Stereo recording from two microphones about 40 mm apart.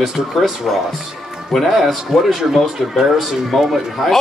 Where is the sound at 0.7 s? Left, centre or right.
Centre.